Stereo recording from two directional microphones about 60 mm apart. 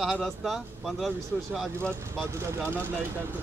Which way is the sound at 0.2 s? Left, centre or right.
Centre.